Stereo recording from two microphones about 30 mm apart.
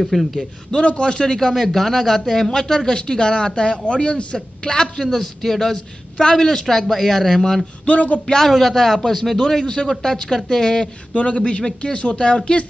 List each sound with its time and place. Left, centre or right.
0.0 s a man's voice: centre
0.8 s speech: left
1.2 s a man's voice: centre; by 4.4 s left
4.6 s speech: centre
6.1 s a man's voice: left
6.6 s speech: centre
7.8 s speech: left
8.4 s a man's voice: centre; by 10.9 s left
11.1 s speech: left